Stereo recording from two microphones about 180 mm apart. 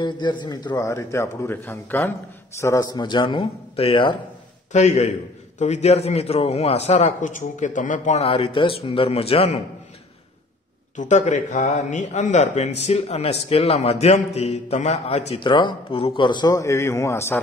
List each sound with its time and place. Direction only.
0.0 s a man's voice: 25° left (ahead or behind)
11.0 s speech: 45° left (ahead or behind); by 17.4 s 15° left (ahead or behind)